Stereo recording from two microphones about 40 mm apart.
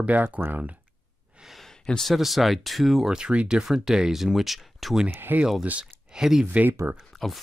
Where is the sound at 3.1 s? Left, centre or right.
Right; by 5.0 s centre.